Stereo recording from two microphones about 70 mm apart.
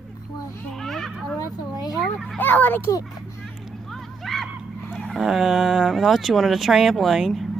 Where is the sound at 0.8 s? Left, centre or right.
Centre.